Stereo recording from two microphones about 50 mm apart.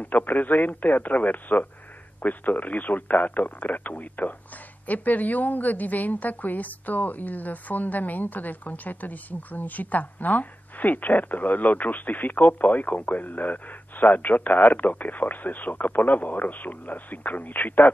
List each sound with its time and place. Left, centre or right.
0.0 s a woman's voice: left